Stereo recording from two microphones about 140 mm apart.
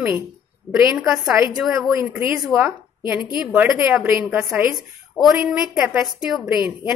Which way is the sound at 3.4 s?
5° right (ahead or behind).